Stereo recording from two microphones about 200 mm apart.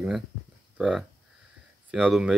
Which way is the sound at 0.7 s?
5° right (ahead or behind).